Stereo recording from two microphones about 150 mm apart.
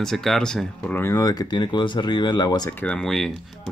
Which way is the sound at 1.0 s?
25° left (ahead or behind).